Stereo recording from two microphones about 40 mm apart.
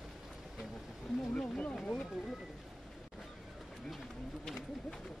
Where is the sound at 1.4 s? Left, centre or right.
Left.